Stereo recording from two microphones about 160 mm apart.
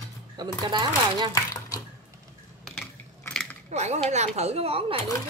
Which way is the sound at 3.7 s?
45° right (ahead or behind).